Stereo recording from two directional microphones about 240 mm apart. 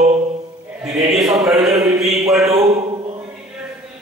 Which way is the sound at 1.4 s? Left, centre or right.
Centre.